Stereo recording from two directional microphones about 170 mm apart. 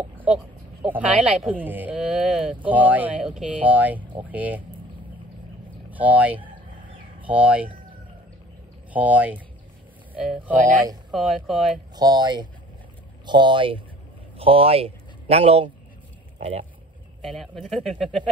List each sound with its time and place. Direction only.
0.2 s speech: 5° right (ahead or behind)
5.9 s speech: 10° right (ahead or behind)
8.9 s speech: 10° right (ahead or behind)
11.9 s a man's voice: 25° right (ahead or behind)
17.2 s speech: centre (ahead or behind)